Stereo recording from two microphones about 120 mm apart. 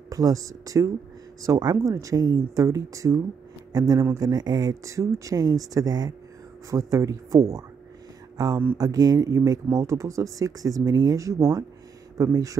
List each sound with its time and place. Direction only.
0.1 s speech: 30° right (ahead or behind)